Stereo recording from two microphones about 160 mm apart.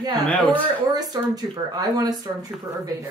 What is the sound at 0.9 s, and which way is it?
Speech, 25° right (ahead or behind).